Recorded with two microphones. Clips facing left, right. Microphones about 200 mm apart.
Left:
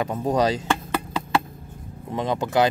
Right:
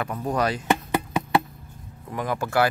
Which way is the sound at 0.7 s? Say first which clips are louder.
Right 2 dB; 20° right (ahead or behind).